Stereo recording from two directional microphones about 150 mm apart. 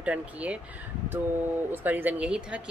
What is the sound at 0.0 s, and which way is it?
Speech, 10° right (ahead or behind).